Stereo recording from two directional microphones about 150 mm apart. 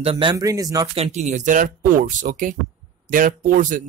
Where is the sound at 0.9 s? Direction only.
45° right (ahead or behind).